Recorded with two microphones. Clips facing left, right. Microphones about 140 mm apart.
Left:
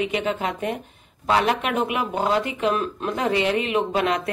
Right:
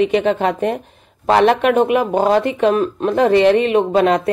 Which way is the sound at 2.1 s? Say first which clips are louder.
Right 6 dB; 40° right (ahead or behind).